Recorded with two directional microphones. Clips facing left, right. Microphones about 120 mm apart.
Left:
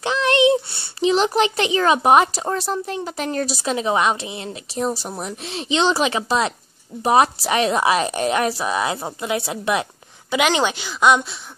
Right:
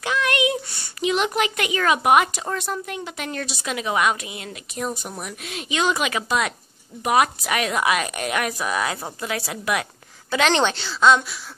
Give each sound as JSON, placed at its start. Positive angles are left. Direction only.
{"t": 0.0, "sound": "a child's voice", "side_deg": 30}
{"t": 10.3, "sound": "a woman's voice", "side_deg": 10}